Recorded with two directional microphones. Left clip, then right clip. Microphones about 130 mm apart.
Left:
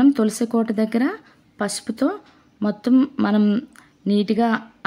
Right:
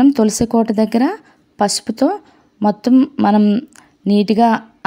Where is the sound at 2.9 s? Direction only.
25° right (ahead or behind).